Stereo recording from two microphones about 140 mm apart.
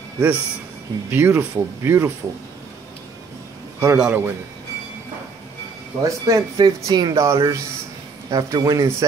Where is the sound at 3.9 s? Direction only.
5° right (ahead or behind).